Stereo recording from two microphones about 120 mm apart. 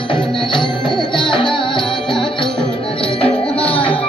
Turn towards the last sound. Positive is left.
turn(degrees=45)  # may be behind; listen again after turning